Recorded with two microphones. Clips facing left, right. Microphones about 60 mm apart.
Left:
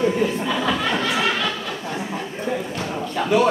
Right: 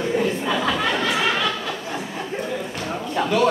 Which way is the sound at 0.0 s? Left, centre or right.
Centre.